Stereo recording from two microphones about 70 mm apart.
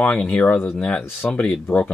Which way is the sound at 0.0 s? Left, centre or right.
Centre.